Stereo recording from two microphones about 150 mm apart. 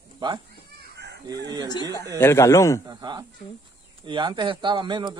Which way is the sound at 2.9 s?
25° right (ahead or behind).